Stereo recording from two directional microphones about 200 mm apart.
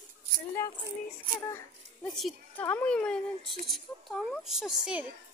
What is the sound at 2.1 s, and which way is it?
Speech, centre (ahead or behind).